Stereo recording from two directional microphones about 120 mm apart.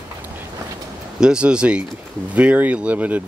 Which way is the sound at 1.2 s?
5° right (ahead or behind).